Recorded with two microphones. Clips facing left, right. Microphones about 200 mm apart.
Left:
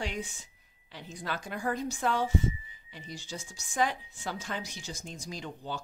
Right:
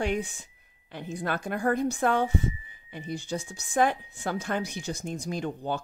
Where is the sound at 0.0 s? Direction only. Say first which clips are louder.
Right 8 dB; 55° right (ahead or behind).